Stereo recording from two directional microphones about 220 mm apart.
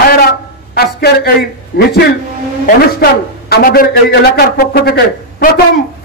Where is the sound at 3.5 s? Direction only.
45° left (ahead or behind).